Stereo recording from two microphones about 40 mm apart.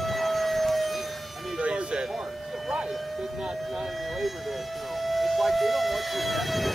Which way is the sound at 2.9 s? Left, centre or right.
Centre.